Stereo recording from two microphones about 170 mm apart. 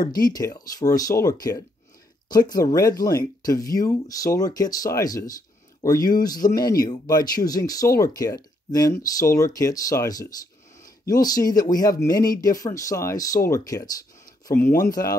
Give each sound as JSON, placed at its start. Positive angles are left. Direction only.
{"t": 0.1, "sound": "speech", "side_deg": 20}